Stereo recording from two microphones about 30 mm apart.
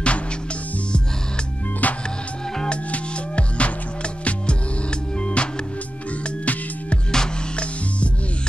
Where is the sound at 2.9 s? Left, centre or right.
Left.